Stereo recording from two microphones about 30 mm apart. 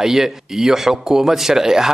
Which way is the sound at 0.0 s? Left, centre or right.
Centre.